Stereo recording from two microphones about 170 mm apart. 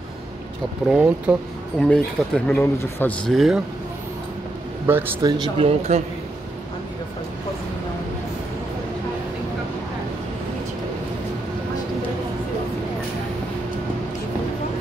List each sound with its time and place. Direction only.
0.8 s speech: 10° right (ahead or behind)
1.8 s speech: 5° left (ahead or behind)
3.3 s speech: centre (ahead or behind)
4.9 s speech: 15° right (ahead or behind)
5.2 s speech: 30° right (ahead or behind)